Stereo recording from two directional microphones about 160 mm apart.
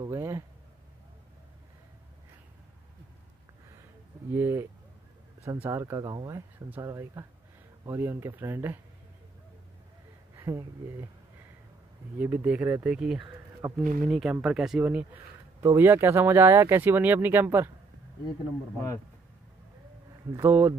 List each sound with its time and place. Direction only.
0.0 s a sound: 20° right (ahead or behind)
4.3 s speech: 15° right (ahead or behind)
10.3 s speech: 15° right (ahead or behind)
12.2 s speech: 10° right (ahead or behind)
14.0 s speech: 5° right (ahead or behind)
20.3 s speech: 15° right (ahead or behind)